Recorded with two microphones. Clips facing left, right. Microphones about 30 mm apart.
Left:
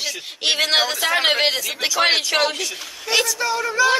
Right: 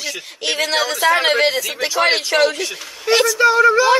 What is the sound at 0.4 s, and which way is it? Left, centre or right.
Speech, left.